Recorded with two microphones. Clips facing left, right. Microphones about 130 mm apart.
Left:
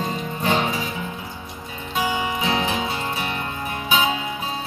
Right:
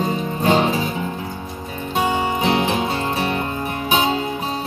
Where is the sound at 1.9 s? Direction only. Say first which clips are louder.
Right 4 dB; 35° right (ahead or behind).